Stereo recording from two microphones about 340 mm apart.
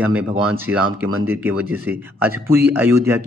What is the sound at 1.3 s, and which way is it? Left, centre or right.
A man's voice, centre.